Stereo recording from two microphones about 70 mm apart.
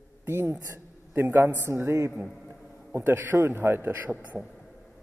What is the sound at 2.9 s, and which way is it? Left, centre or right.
A man's voice, right.